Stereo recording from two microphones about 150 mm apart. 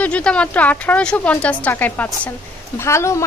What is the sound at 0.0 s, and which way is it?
Speech, 5° left (ahead or behind).